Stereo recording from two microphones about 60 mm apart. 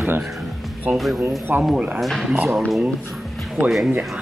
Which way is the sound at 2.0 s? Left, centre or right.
Centre.